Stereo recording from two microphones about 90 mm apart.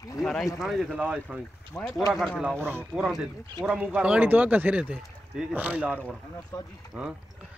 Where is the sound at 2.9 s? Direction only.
5° right (ahead or behind).